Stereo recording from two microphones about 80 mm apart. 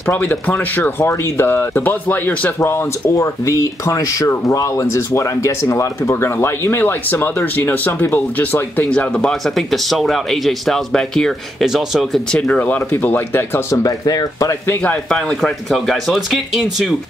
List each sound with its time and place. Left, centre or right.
0.1 s speech: left; by 11.3 s centre
11.6 s speech: centre
12.3 s speech: centre
13.8 s speech: left
15.0 s speech: centre